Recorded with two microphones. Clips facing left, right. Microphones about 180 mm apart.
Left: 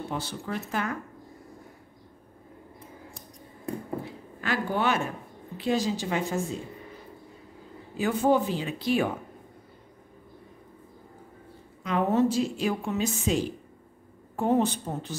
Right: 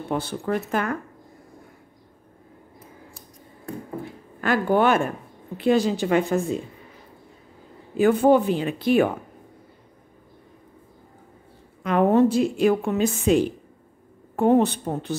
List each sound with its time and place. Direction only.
0.1 s a woman's voice: 55° right (ahead or behind)
4.4 s a woman's voice: 50° right (ahead or behind)
8.0 s a woman's voice: 60° right (ahead or behind)
11.8 s a woman's voice: 55° right (ahead or behind)